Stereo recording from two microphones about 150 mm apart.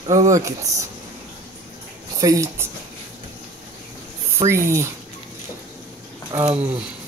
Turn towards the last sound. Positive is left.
turn(degrees=-10)  # may be behind; listen again after turning